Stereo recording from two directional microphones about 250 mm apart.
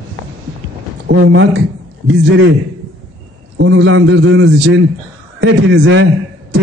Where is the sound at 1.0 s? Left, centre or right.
Right.